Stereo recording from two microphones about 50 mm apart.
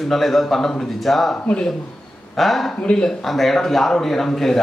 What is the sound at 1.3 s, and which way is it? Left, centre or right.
Speech, left.